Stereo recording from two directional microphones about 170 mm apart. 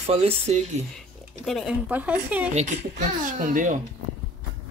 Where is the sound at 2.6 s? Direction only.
45° right (ahead or behind).